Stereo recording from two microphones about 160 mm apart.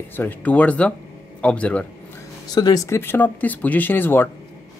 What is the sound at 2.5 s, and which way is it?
Speech, 25° left (ahead or behind).